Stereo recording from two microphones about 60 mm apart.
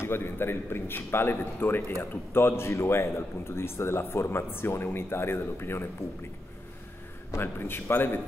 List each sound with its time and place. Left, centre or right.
0.0 s a man's voice: left
7.3 s a man's voice: left